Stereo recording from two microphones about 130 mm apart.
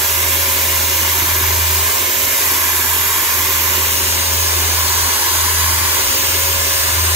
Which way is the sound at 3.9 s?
20° right (ahead or behind).